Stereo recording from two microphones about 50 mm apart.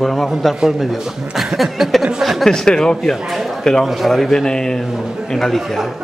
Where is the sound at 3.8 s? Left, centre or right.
Centre.